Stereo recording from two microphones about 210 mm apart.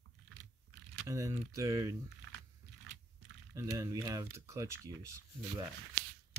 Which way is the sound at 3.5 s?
15° right (ahead or behind).